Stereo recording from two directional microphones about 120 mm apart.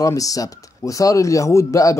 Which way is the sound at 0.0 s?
30° left (ahead or behind).